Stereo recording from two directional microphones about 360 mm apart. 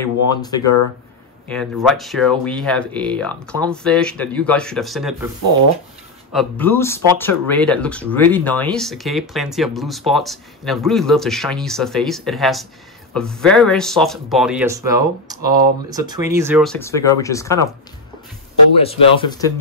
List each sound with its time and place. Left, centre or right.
0.0 s speech: centre
18.8 s speech: centre